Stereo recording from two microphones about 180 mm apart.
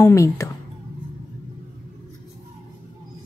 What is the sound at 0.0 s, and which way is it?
Speech, 15° left (ahead or behind).